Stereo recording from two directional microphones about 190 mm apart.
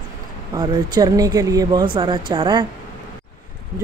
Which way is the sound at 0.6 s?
20° right (ahead or behind).